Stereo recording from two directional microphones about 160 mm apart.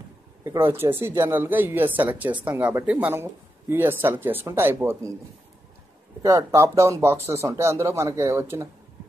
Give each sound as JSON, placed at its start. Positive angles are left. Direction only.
{"t": 0.4, "sound": "speech", "side_deg": -15}
{"t": 6.2, "sound": "speech", "side_deg": -20}